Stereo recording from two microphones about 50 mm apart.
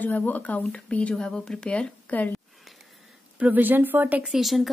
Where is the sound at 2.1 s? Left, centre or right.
Left.